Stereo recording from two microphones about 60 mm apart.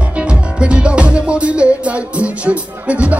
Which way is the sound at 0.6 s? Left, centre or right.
Centre.